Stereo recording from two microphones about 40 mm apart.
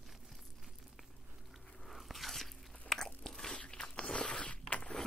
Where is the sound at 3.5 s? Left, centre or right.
Left.